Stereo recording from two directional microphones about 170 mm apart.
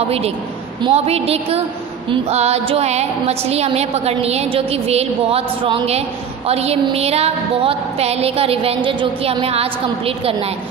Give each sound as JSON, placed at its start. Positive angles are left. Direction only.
{"t": 0.8, "sound": "a woman's voice", "side_deg": -35}